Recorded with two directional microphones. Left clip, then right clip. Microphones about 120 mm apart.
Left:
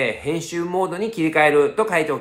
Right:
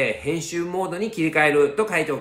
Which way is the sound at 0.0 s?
35° left (ahead or behind).